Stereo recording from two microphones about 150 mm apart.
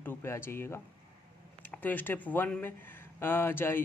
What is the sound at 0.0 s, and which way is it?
Speech, 15° left (ahead or behind).